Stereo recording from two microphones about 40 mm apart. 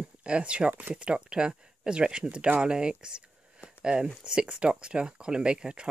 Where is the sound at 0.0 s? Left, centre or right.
Right.